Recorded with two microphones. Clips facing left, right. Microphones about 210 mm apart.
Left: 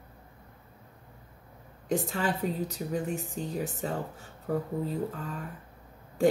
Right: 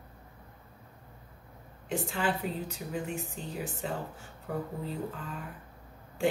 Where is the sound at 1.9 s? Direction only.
40° left (ahead or behind).